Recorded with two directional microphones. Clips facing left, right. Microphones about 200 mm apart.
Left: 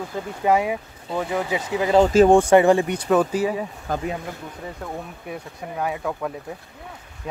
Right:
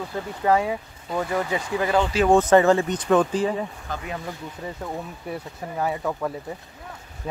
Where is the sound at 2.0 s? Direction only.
40° left (ahead or behind).